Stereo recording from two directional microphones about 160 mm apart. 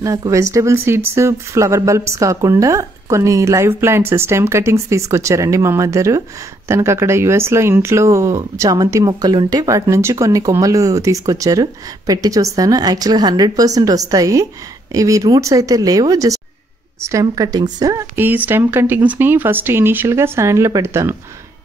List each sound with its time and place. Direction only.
0.0 s a woman's voice: 20° right (ahead or behind)